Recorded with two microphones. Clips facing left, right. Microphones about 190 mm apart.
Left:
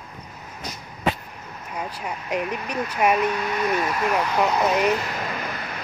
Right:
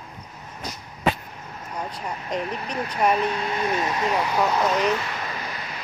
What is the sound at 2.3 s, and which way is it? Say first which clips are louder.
Speech: left 2 dB; 10° left (ahead or behind).